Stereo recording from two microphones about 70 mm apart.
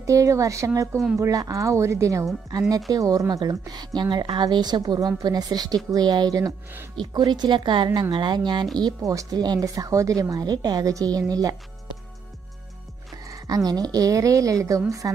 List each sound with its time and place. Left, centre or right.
0.0 s a woman's voice: right
7.0 s speech: right
9.0 s speech: right
9.4 s a woman's voice: right
13.3 s a woman's voice: right